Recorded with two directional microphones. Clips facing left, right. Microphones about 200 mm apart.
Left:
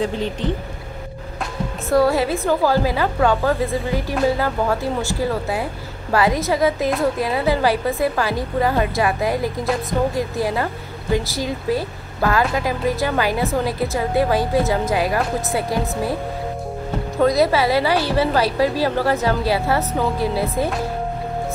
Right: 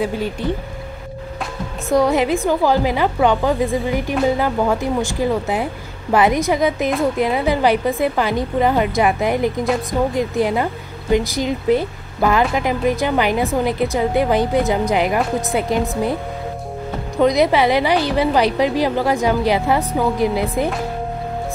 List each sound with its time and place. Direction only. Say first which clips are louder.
0.0 s a woman's voice: right 1 dB; 10° right (ahead or behind)
1.9 s a woman's voice: right 1 dB; 15° right (ahead or behind)
17.2 s a woman's voice: right 2 dB; 20° right (ahead or behind)